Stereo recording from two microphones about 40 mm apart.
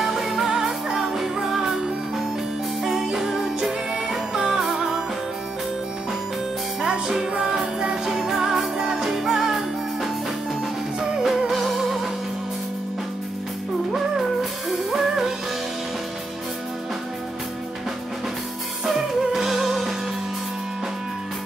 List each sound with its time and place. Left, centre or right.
0.0 s music: centre
6.8 s music: centre
8.1 s music: centre
8.4 s music: centre
11.0 s music: centre
11.5 s music: centre
13.9 s music: centre
18.9 s music: centre